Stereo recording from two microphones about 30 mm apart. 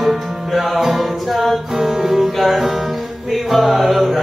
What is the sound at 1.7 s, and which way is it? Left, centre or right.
Music, centre.